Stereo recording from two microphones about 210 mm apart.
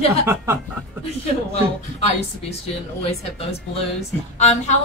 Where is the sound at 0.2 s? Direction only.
10° right (ahead or behind).